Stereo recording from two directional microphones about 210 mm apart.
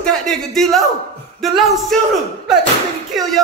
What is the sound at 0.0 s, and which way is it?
A man's voice, centre (ahead or behind).